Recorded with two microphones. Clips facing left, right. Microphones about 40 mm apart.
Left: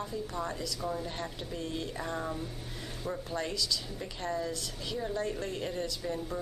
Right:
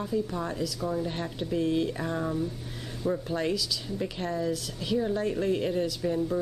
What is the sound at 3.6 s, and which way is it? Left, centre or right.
Speech, centre.